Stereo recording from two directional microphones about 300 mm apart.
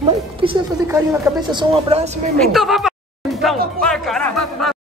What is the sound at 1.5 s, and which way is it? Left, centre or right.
Speech, centre.